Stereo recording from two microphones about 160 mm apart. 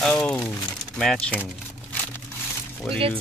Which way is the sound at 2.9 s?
35° right (ahead or behind).